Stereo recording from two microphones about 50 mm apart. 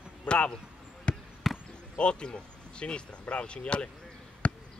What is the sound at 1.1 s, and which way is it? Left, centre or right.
Basketball bounce, left.